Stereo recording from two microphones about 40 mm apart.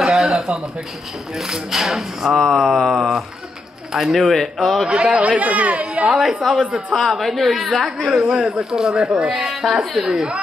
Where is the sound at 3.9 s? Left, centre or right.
Centre.